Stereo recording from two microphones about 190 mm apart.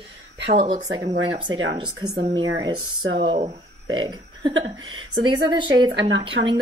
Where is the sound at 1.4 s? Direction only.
90° right.